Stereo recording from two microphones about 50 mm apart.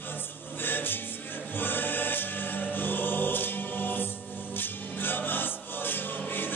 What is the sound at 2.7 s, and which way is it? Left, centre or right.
Choir, left.